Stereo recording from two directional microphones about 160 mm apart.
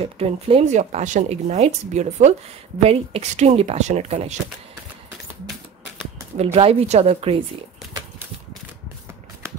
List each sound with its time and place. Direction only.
0.0 s speech: 40° right (ahead or behind)
6.3 s speech: 40° right (ahead or behind)